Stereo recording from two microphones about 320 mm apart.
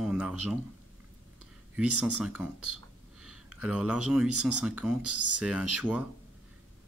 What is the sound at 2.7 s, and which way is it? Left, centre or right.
Speech, right.